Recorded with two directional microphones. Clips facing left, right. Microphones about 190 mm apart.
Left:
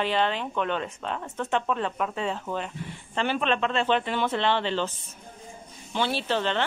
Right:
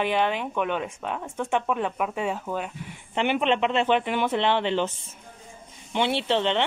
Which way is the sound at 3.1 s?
15° right (ahead or behind).